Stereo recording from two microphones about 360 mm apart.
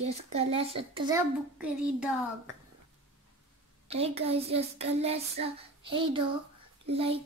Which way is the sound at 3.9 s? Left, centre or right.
Centre.